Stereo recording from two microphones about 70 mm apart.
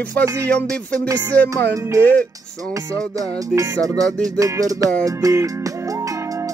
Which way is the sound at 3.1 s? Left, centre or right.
Right.